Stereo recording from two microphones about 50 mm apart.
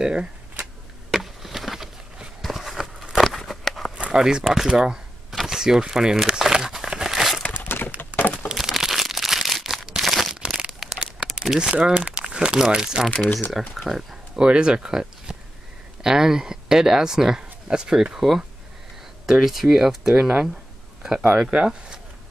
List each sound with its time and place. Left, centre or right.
0.0 s a sound: centre
1.1 s chop: centre
2.4 s a sound: centre
4.2 s speech: centre
5.5 s crumpling: centre
7.5 s a sound: left
8.2 s crumpling: left
8.5 s crumpling: centre
10.3 s crumpling: centre
11.3 s speech: centre
13.5 s speech: centre
14.3 s speech: centre
21.4 s speech: centre